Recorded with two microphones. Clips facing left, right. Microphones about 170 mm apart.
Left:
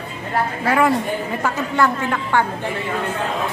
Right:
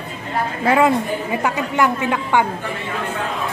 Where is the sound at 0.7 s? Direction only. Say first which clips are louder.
Right 2 dB; 20° right (ahead or behind).